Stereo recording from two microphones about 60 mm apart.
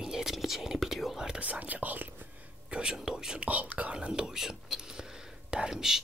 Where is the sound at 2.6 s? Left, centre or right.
Centre.